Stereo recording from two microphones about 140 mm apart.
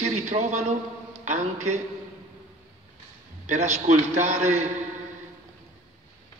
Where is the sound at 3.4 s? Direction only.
60° right (ahead or behind).